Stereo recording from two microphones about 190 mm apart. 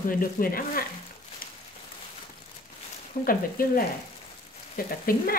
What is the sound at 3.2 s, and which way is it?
Speech, 50° left (ahead or behind).